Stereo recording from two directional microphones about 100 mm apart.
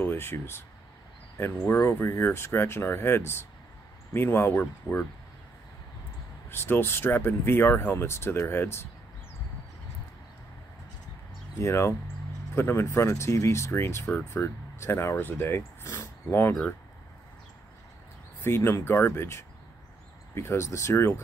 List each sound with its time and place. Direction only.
0.0 s speech: 20° left (ahead or behind)
6.5 s speech: 25° left (ahead or behind)
11.5 s speech: 30° left (ahead or behind)
18.4 s speech: 25° left (ahead or behind)